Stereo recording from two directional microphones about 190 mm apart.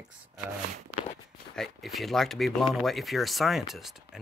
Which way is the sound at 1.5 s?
Centre (ahead or behind).